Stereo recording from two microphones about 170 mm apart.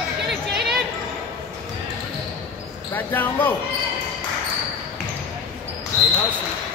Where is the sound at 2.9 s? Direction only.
10° left (ahead or behind).